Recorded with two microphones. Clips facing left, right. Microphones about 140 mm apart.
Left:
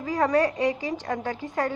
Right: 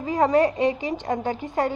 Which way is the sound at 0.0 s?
25° right (ahead or behind).